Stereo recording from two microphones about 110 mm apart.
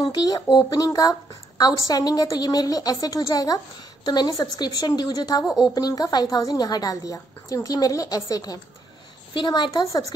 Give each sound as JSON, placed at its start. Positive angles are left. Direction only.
{"t": 0.0, "sound": "a woman's voice", "side_deg": 40}